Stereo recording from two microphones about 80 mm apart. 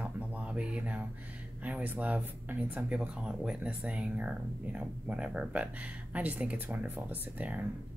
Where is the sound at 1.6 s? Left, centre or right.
Centre.